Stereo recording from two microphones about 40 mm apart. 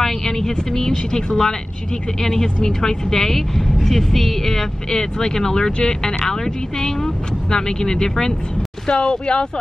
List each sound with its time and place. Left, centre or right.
0.4 s speech: centre